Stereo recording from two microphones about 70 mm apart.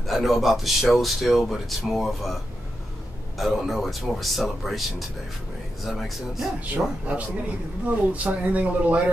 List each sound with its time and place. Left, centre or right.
0.0 s speech: centre
3.3 s speech: centre
6.6 s speech: right